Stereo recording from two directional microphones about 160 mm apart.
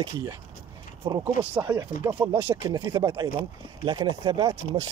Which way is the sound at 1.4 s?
10° right (ahead or behind).